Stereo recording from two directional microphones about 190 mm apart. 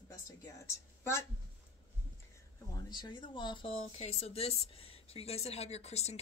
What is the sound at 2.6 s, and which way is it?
Speech, 20° left (ahead or behind).